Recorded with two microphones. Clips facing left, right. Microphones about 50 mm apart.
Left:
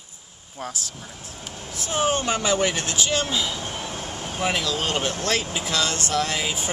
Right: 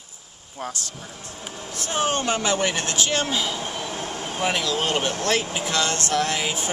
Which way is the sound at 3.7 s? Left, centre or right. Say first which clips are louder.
Right 2 dB; centre.